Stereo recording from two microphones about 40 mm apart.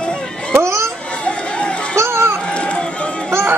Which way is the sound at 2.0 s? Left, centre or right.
Right.